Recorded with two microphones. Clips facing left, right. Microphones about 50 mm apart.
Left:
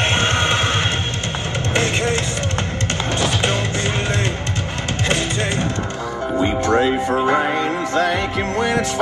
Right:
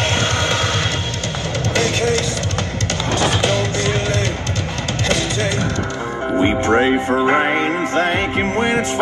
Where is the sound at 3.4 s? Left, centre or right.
Left.